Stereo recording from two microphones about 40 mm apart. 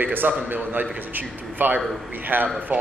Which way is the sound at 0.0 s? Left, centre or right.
Right.